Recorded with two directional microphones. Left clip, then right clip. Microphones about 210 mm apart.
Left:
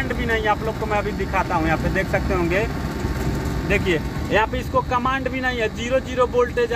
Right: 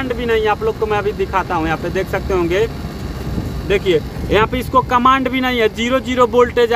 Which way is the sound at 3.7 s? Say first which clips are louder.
Right 6 dB; 40° right (ahead or behind).